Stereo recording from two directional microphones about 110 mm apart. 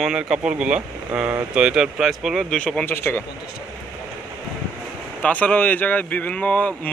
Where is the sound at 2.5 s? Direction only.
10° left (ahead or behind).